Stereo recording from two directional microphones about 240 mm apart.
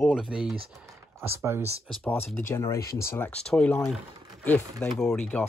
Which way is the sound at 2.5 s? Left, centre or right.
Centre.